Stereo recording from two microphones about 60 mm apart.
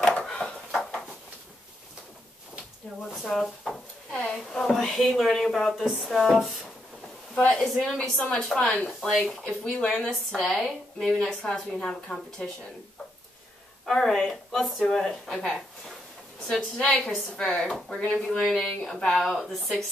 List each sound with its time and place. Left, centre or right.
0.0 s a sound: centre
3.3 s drawer open or close: centre
4.2 s a woman's voice: centre
7.3 s a woman's voice: left
7.6 s a woman's voice: centre
13.9 s a woman's voice: centre